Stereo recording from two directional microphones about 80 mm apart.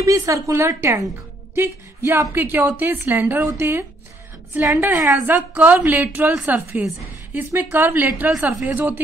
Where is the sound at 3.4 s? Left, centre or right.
Right.